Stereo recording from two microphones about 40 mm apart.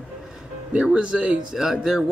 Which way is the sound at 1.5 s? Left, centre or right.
Centre.